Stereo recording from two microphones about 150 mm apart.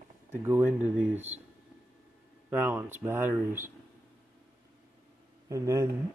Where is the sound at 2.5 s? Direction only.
10° right (ahead or behind).